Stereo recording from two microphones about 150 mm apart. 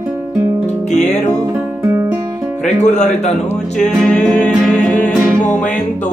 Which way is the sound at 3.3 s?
Centre (ahead or behind).